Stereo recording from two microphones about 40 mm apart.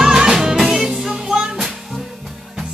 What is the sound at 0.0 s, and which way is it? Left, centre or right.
Music, centre.